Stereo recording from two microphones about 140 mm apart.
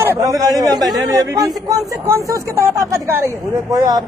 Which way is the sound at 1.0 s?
25° right (ahead or behind).